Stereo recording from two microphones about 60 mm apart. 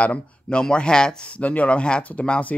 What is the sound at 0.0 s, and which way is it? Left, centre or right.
Speech, centre.